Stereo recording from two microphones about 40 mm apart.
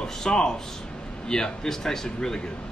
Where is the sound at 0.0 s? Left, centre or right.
Centre.